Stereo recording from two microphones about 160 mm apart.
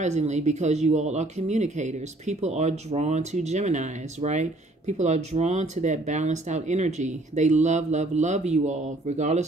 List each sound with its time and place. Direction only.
0.0 s speech: 45° right (ahead or behind)